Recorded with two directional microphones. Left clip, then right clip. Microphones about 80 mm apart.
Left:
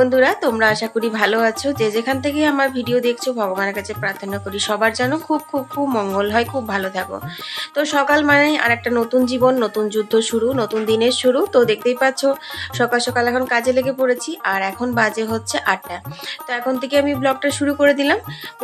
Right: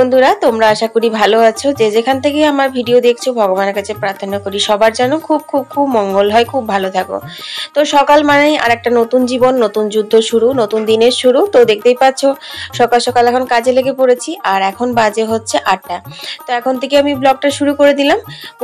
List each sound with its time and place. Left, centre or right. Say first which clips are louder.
0.0 s speech: right 6 dB; right; by 6.2 s centre
6.2 s speech: right 8 dB; right